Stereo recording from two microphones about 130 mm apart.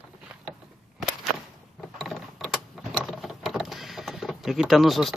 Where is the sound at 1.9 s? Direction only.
Centre (ahead or behind).